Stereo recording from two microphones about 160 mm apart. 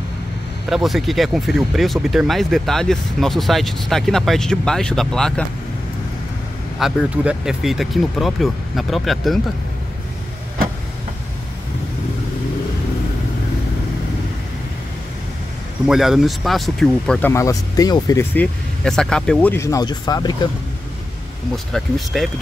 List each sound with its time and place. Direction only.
0.7 s speech: centre (ahead or behind)
6.8 s speech: 5° right (ahead or behind)
15.9 s speech: centre (ahead or behind)
17.3 s speech: 20° left (ahead or behind)
18.3 s speech: 5° left (ahead or behind); by 20.3 s 25° left (ahead or behind)
21.7 s speech: centre (ahead or behind)